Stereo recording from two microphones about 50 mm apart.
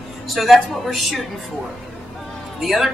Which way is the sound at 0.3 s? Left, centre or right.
Centre.